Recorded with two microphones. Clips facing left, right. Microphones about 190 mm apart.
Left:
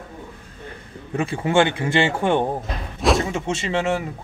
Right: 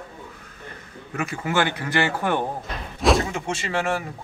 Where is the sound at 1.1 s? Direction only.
30° left (ahead or behind).